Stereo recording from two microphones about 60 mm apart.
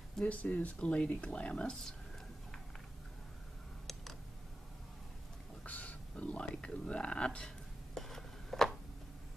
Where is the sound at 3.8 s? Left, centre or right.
Centre.